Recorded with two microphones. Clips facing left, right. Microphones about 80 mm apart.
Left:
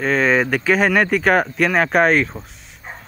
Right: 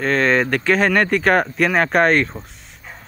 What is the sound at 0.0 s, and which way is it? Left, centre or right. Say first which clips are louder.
Speech: even; centre.